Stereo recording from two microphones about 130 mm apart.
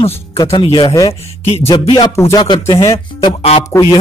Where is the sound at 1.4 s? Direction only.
50° left (ahead or behind).